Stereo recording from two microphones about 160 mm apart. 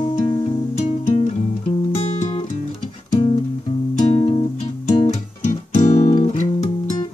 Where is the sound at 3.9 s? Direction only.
40° left (ahead or behind).